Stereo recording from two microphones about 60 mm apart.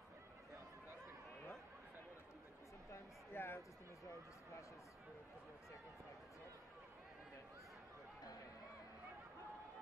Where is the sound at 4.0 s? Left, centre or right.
Left.